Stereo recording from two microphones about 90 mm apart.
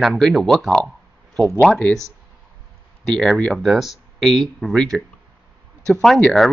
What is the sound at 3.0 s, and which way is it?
Speech, 5° left (ahead or behind).